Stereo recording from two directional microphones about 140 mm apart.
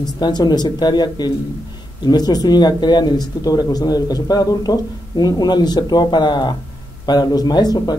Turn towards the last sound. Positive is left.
turn(degrees=30)  # may be behind; listen again after turning